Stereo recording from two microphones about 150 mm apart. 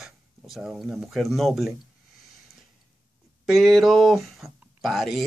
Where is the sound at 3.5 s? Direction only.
Centre (ahead or behind).